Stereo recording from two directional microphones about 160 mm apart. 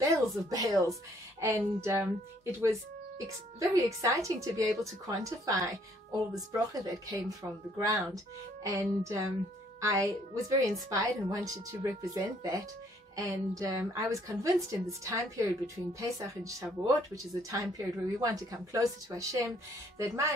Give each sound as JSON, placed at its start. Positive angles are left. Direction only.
{"t": 0.0, "sound": "a woman's voice", "side_deg": -20}